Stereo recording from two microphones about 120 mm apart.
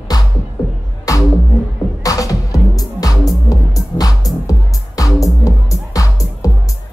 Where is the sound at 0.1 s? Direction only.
35° left (ahead or behind).